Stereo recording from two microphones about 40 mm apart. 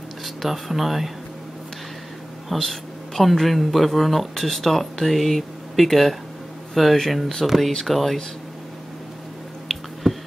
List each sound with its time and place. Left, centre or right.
0.2 s speech: centre
2.5 s speech: centre
10.0 s a sound: centre